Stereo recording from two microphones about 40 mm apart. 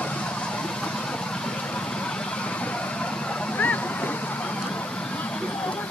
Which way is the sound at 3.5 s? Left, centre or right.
Left.